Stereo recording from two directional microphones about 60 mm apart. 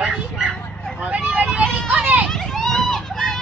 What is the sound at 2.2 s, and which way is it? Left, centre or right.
Vehicle, centre.